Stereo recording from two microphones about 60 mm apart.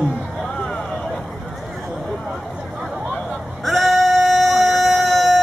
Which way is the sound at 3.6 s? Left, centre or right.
Centre.